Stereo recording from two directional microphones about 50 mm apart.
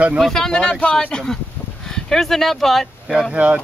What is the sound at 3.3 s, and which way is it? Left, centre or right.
Speech, right.